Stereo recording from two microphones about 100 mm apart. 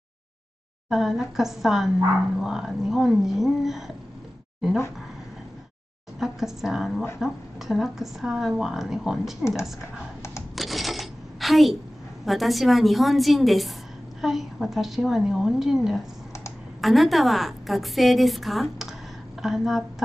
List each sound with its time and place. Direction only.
0.8 s speech: 5° right (ahead or behind)
6.1 s speech: 5° right (ahead or behind)
10.5 s cash register: centre (ahead or behind)
12.3 s speech: centre (ahead or behind)